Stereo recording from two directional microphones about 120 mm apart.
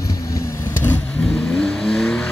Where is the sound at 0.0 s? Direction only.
25° left (ahead or behind).